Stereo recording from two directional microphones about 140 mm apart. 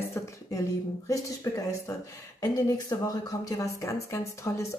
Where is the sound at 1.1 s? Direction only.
25° left (ahead or behind).